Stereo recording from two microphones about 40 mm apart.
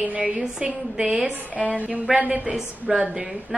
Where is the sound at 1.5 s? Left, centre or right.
Right.